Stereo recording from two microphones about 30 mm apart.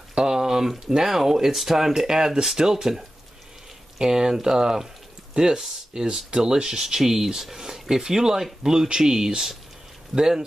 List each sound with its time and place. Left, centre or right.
0.1 s speech: right